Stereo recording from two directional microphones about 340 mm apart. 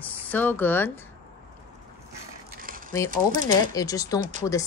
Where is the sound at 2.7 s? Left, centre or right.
Right.